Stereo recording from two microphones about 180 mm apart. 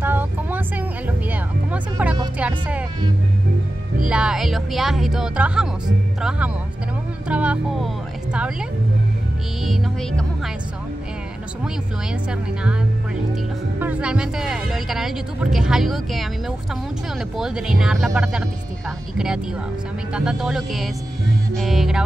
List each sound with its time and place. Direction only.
0.0 s music: 10° right (ahead or behind)
2.3 s speech: 5° right (ahead or behind)
4.0 s speech: 5° right (ahead or behind)
7.2 s speech: 5° right (ahead or behind)
9.7 s speech: centre (ahead or behind)
12.3 s speech: 5° right (ahead or behind)